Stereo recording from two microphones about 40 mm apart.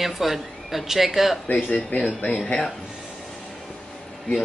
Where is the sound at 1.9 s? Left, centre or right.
Left.